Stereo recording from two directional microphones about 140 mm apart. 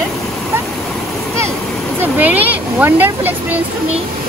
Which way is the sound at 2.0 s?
10° right (ahead or behind).